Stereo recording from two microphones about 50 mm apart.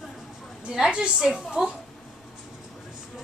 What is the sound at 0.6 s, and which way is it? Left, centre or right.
A woman's voice, centre.